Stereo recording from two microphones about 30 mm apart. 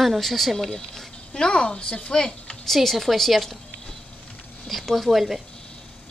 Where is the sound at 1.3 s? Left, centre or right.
Left.